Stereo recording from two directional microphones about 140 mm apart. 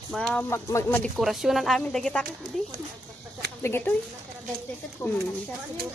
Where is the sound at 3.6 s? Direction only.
15° left (ahead or behind).